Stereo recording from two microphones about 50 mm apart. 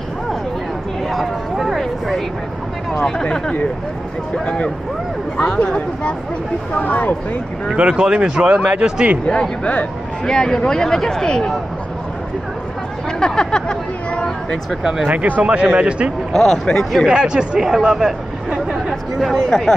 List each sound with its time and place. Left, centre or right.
1.0 s a sound: centre
5.4 s speech: centre
6.8 s speech: left
7.7 s speech: right
9.2 s speech: centre
10.2 s speech: centre
13.2 s speech: centre
14.8 s speech: centre
15.0 s speech: right
16.3 s speech: centre
17.1 s speech: centre
17.6 s chatter: centre
19.1 s speech: centre